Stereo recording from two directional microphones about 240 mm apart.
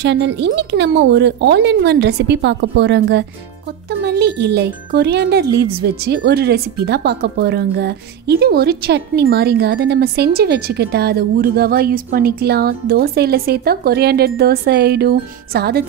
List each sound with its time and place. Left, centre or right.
0.0 s speech: right